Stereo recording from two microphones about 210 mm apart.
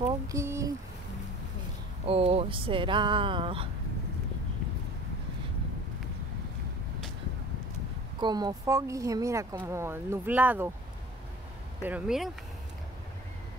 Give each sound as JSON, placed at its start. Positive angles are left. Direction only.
{"t": 0.3, "sound": "a sound", "side_deg": -15}
{"t": 2.0, "sound": "speech", "side_deg": -30}
{"t": 8.2, "sound": "speech", "side_deg": -20}
{"t": 11.8, "sound": "speech", "side_deg": -5}